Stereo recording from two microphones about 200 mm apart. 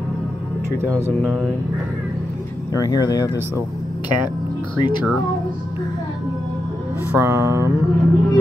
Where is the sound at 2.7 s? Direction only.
15° left (ahead or behind).